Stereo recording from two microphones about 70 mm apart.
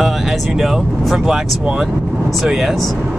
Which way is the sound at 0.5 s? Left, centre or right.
Centre.